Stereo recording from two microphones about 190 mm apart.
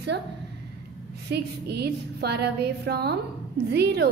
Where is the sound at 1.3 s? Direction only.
60° right (ahead or behind).